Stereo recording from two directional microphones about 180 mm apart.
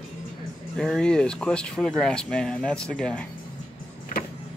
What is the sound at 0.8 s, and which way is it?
Speech, 5° left (ahead or behind).